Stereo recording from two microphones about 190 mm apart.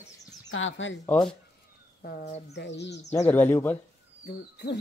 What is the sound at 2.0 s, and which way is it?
Speech, 60° left (ahead or behind).